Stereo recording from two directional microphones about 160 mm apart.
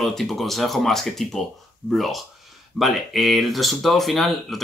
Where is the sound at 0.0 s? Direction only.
Centre (ahead or behind).